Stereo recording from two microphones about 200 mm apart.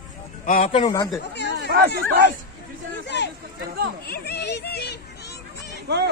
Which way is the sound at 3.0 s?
60° left (ahead or behind).